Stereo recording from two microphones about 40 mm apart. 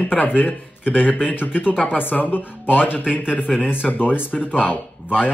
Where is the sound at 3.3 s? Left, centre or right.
Left.